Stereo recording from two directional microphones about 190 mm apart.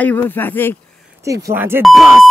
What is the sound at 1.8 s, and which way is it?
Speech, centre (ahead or behind).